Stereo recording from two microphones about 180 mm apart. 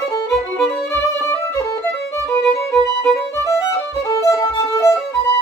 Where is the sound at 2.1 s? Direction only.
15° left (ahead or behind).